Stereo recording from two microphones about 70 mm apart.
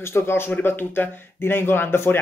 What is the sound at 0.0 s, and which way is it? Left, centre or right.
Speech, left.